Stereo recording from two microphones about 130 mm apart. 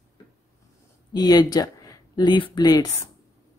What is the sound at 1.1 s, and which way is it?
Speech, 30° left (ahead or behind).